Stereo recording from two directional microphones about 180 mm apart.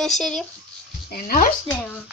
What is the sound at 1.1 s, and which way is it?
Speech, 55° left (ahead or behind).